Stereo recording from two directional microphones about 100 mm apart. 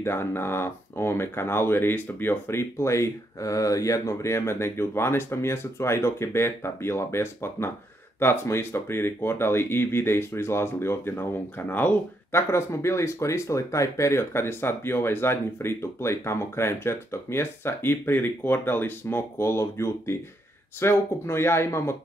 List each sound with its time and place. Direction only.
0.0 s speech: 25° left (ahead or behind)